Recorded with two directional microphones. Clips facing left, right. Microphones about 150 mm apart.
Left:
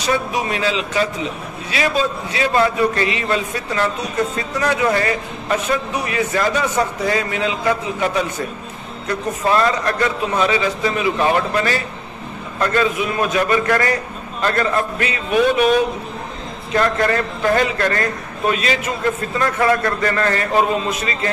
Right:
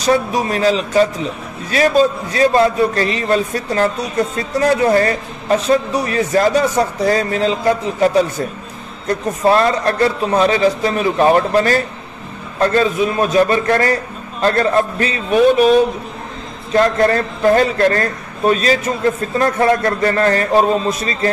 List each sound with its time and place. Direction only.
0.0 s a man's voice: 40° right (ahead or behind)